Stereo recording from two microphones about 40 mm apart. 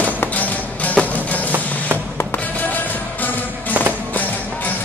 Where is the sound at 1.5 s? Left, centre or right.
Right.